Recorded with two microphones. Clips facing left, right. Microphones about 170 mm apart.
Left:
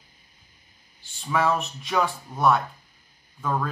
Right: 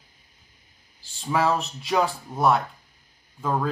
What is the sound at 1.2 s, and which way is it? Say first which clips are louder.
Speech: right 1 dB; 30° right (ahead or behind).